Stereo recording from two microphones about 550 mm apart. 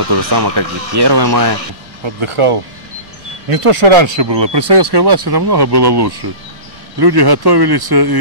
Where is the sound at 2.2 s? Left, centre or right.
Right.